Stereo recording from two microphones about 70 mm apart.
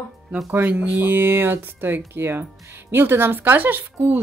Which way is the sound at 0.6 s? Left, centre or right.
Right.